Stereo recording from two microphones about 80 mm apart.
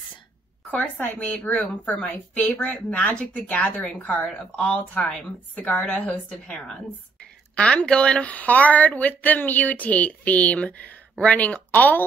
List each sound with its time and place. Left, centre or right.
0.7 s a woman's voice: centre
7.5 s a woman's voice: centre